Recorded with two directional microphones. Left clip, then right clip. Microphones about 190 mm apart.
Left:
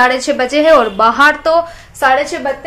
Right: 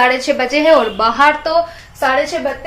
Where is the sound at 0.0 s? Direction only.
10° left (ahead or behind).